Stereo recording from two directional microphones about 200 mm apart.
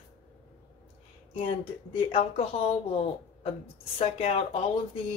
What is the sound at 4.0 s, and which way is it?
Speech, 30° left (ahead or behind).